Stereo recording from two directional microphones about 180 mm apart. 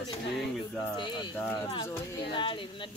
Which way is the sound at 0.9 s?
25° left (ahead or behind).